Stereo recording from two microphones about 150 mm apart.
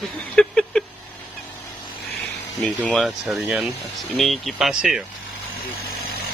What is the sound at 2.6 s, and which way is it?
Speech, 10° left (ahead or behind).